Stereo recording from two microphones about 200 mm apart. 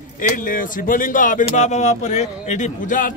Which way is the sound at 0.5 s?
45° left (ahead or behind).